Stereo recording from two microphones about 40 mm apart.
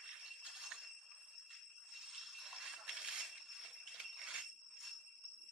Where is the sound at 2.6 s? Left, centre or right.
Centre.